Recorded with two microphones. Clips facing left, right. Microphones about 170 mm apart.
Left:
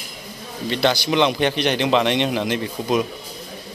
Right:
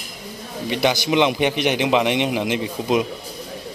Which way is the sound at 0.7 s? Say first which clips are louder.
Even; 15° right (ahead or behind).